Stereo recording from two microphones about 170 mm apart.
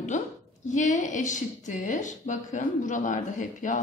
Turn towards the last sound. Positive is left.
turn(degrees=50)  # may be behind; listen again after turning